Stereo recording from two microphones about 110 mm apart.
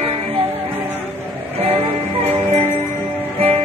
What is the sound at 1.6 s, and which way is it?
Music, 70° right (ahead or behind).